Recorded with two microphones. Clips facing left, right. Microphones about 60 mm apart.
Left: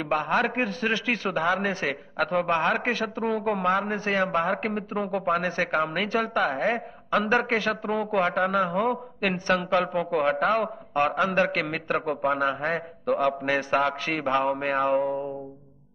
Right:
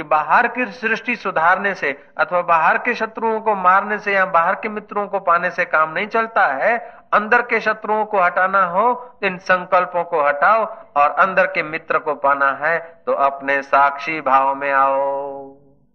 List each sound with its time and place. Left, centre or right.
0.1 s a woman's voice: right